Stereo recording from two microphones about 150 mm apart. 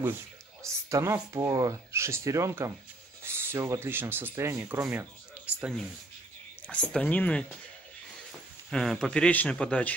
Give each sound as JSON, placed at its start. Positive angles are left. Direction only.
{"t": 0.6, "sound": "speech", "side_deg": -20}
{"t": 5.6, "sound": "a man's voice", "side_deg": 0}